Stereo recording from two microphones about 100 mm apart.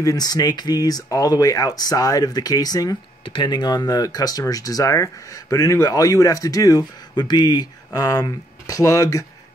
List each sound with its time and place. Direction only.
0.0 s speech: 40° left (ahead or behind)
3.3 s speech: 50° left (ahead or behind); by 9.2 s 30° left (ahead or behind)